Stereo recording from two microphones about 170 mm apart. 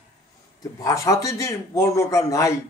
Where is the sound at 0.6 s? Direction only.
20° left (ahead or behind).